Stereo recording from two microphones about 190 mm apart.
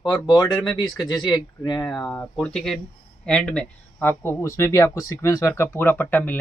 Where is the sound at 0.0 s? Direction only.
20° left (ahead or behind).